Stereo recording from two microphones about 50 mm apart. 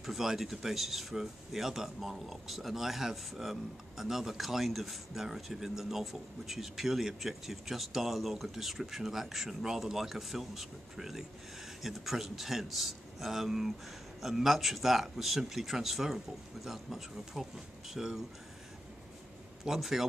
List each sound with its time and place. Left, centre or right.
0.0 s speech: centre
19.6 s speech: centre